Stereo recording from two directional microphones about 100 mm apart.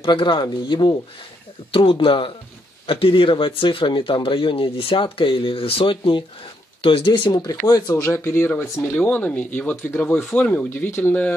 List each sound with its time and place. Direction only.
0.0 s speech: 55° left (ahead or behind)
1.7 s speech: 65° left (ahead or behind); by 11.3 s 15° left (ahead or behind)